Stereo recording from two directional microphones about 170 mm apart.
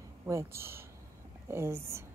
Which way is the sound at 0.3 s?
15° right (ahead or behind).